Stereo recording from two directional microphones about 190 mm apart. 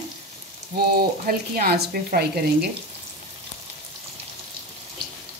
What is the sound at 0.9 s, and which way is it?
Speech, 50° right (ahead or behind).